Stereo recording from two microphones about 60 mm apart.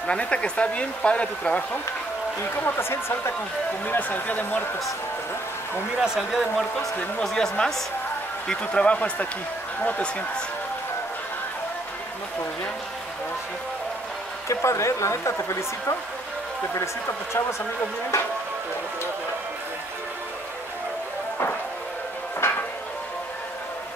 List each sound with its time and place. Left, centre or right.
0.0 s speech: centre
2.5 s speech: left
3.8 s speech: left
5.9 s speech: centre
7.2 s speech: centre
14.5 s a woman's voice: left
22.4 s a sound: left